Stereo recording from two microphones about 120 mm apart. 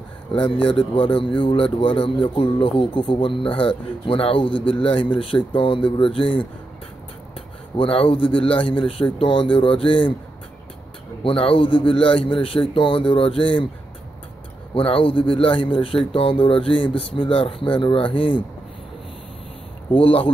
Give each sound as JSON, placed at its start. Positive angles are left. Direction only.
{"t": 0.3, "sound": "speech", "side_deg": 45}
{"t": 7.7, "sound": "speech", "side_deg": 50}
{"t": 11.2, "sound": "speech", "side_deg": 50}
{"t": 14.7, "sound": "speech", "side_deg": 50}
{"t": 19.9, "sound": "speech", "side_deg": 50}